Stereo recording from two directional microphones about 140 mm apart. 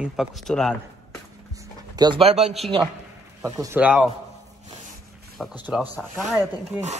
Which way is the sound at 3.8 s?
10° right (ahead or behind).